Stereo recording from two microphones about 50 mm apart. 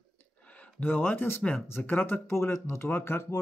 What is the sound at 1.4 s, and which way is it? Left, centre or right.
Speech, left.